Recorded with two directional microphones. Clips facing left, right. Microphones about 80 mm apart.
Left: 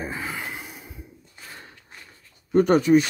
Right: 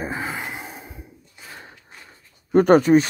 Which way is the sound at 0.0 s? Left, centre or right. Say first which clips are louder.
Right 3 dB; right.